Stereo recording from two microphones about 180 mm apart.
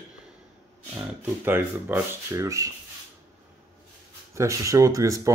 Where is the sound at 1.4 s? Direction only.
10° right (ahead or behind).